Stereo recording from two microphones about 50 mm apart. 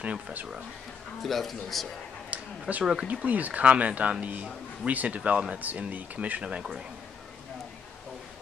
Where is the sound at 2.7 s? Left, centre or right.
Right.